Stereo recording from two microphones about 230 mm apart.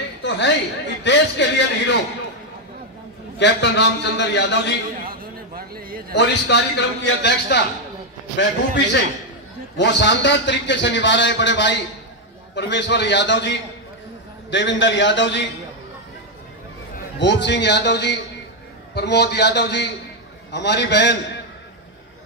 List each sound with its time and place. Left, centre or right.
0.2 s a sound: left
1.0 s a man's voice: left
3.3 s a man's voice: left
5.0 s a sound: right
6.1 s a man's voice: left
17.2 s a man's voice: left